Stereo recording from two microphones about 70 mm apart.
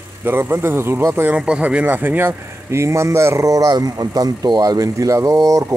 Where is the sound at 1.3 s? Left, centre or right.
Centre.